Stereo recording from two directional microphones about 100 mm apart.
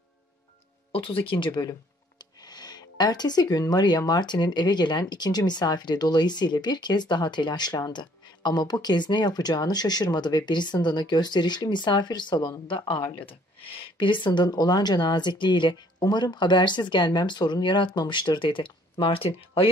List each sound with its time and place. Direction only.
0.9 s speech: 60° left (ahead or behind)